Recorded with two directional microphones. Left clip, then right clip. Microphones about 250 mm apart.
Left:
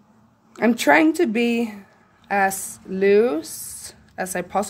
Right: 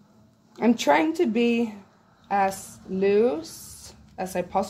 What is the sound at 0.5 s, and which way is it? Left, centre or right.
Speech, left.